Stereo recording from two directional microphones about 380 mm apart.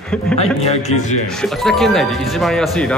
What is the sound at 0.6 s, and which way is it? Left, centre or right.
Speech, centre.